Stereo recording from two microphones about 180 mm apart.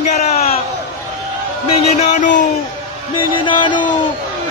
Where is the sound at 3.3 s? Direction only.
25° left (ahead or behind).